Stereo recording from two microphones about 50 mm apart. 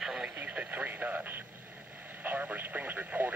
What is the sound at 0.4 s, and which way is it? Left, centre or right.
Radio, right.